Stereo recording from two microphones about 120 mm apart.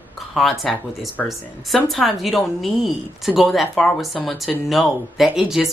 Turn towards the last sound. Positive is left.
turn(degrees=-5)  # may be behind; listen again after turning